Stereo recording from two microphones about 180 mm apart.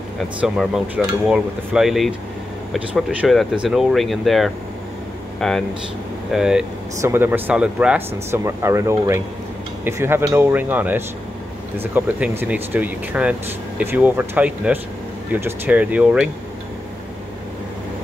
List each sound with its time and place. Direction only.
0.4 s speech: 5° right (ahead or behind)